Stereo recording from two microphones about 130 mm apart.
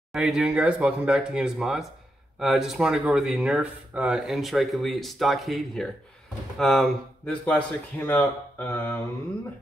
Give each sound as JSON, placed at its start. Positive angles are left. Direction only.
{"t": 0.1, "sound": "speech", "side_deg": -5}